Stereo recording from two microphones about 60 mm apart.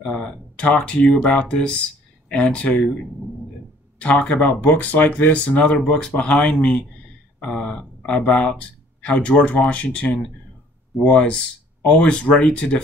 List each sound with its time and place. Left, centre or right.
0.0 s speech: centre
4.0 s speech: centre